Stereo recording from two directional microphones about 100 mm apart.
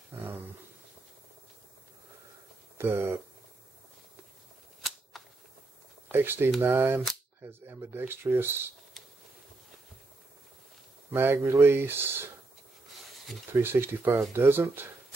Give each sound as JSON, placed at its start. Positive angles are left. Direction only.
{"t": 0.1, "sound": "dog", "side_deg": -25}
{"t": 2.8, "sound": "speech", "side_deg": -25}
{"t": 5.1, "sound": "a sound", "side_deg": 0}
{"t": 6.1, "sound": "speech", "side_deg": -20}
{"t": 11.1, "sound": "speech", "side_deg": -20}
{"t": 13.5, "sound": "speech", "side_deg": -25}